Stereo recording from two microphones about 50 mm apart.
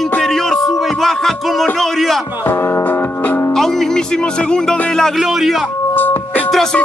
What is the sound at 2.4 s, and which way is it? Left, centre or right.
Music, left.